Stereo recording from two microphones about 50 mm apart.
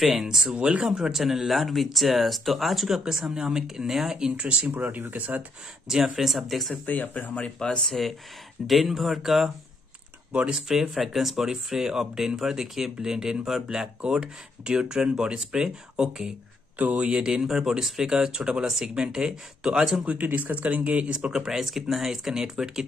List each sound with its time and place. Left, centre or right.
0.0 s speech: centre
4.4 s speech: right
5.9 s speech: centre
6.7 s speech: left
7.3 s speech: left
7.8 s speech: centre
10.5 s speech: centre
16.7 s speech: right
17.1 s speech: centre
20.1 s speech: right
21.3 s speech: centre